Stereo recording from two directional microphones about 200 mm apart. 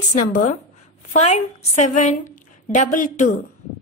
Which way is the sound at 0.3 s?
40° left (ahead or behind).